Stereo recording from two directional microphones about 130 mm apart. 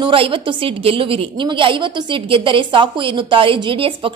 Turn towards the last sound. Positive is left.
turn(degrees=-45)  # may be behind; listen again after turning